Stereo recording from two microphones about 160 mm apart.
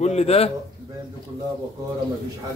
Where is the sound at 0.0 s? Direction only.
40° left (ahead or behind).